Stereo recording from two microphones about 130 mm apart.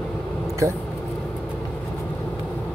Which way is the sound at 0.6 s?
25° right (ahead or behind).